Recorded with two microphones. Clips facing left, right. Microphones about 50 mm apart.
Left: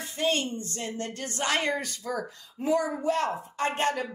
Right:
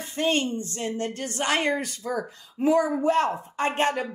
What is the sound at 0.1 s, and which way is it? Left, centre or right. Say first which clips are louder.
A woman's voice: right 3 dB; right.